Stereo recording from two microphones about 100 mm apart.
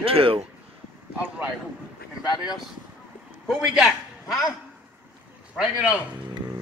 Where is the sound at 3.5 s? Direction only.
5° right (ahead or behind).